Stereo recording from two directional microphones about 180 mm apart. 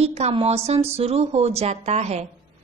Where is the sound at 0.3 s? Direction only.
35° right (ahead or behind).